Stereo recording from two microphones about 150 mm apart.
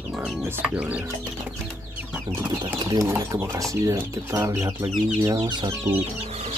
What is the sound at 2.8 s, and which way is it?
Speech, 25° right (ahead or behind).